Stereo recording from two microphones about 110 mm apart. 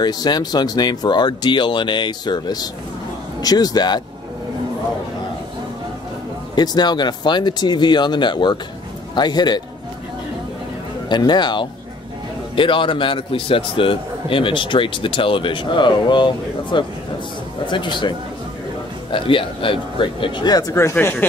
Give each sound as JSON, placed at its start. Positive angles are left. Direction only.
{"t": 0.0, "sound": "speech", "side_deg": 40}
{"t": 6.5, "sound": "speech", "side_deg": 40}
{"t": 11.1, "sound": "a man's voice", "side_deg": 40}
{"t": 20.9, "sound": "speech", "side_deg": 20}